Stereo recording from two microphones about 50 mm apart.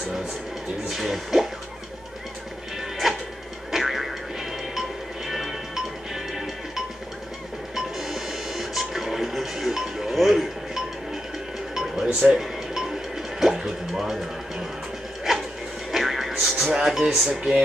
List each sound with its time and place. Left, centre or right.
0.8 s speech: centre
2.8 s music: centre
11.8 s music: centre
15.3 s a sound: centre
15.9 s music: centre
17.3 s speech: centre